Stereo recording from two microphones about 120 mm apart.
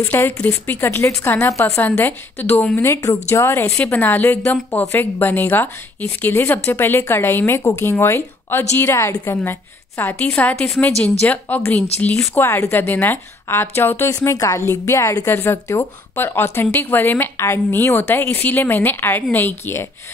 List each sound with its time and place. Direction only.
0.0 s a woman's voice: 15° left (ahead or behind)